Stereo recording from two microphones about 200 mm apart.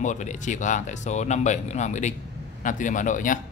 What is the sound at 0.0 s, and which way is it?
Speech, 35° left (ahead or behind).